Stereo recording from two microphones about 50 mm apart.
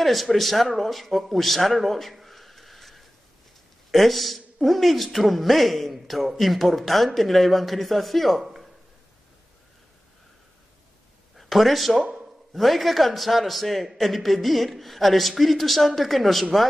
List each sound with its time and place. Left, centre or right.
0.0 s a man's voice: centre
11.3 s a man's voice: centre